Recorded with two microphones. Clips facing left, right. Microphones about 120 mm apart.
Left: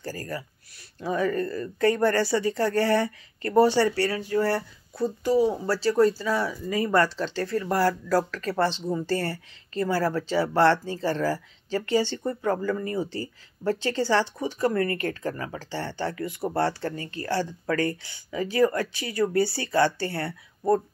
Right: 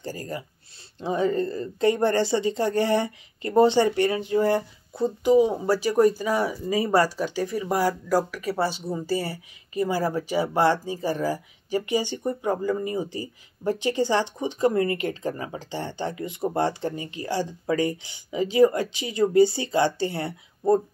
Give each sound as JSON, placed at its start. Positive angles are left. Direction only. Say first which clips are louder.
{"t": 0.0, "sound": "speech", "louder": "right 1 dB", "side_deg": -20}